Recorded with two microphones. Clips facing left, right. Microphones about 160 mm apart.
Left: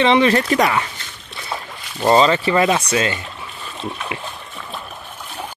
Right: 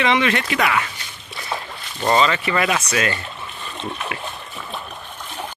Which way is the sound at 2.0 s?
35° left (ahead or behind).